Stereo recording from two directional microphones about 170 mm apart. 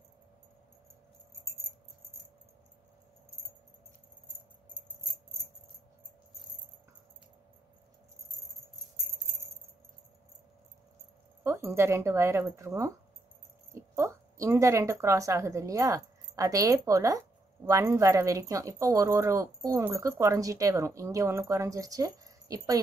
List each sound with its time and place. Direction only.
11.4 s a woman's voice: 15° right (ahead or behind)